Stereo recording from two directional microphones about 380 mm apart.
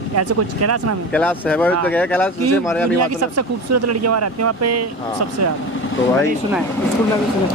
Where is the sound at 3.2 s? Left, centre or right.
Right.